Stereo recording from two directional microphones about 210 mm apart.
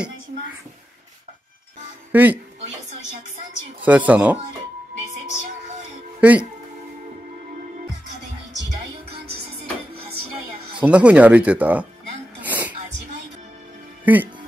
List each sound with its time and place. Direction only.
2.1 s speech: 10° right (ahead or behind)
3.8 s speech: 5° right (ahead or behind)
6.2 s speech: 5° right (ahead or behind)
8.5 s music: 50° right (ahead or behind)
10.8 s speech: 5° right (ahead or behind)
12.4 s sneeze: 10° right (ahead or behind)
14.0 s speech: 10° right (ahead or behind)